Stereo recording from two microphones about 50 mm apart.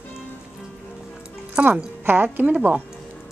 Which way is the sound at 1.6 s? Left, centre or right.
Right.